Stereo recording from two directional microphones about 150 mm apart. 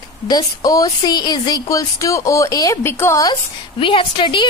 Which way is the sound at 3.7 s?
35° left (ahead or behind).